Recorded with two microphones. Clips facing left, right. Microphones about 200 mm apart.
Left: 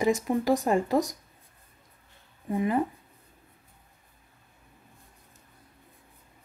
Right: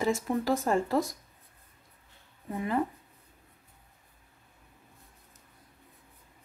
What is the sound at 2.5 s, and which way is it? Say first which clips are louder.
Speech: left 5 dB; 15° left (ahead or behind).